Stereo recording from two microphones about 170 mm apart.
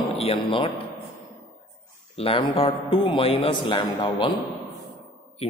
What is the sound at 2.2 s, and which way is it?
A man's voice, 35° left (ahead or behind).